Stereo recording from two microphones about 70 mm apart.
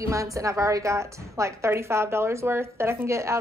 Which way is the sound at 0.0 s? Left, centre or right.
Right.